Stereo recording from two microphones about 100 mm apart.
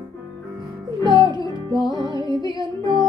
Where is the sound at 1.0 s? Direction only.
50° right (ahead or behind).